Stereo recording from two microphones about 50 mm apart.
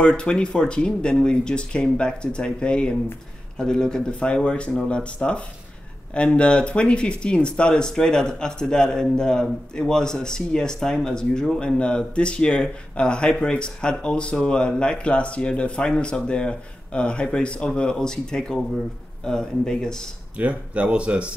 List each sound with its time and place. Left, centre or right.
0.0 s speech: centre
20.3 s speech: right